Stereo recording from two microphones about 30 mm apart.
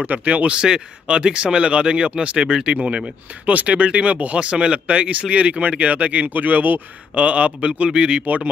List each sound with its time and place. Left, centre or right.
0.0 s speech: right
0.5 s speech: right
7.2 s speech: right